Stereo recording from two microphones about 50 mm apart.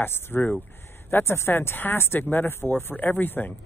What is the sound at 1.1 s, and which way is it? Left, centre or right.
Speech, left.